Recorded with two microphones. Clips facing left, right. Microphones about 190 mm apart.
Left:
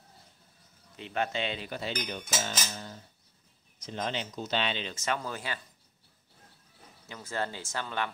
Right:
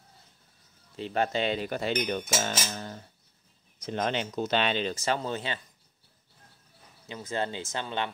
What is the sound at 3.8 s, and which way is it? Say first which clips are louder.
Speech: right 5 dB; 60° right (ahead or behind).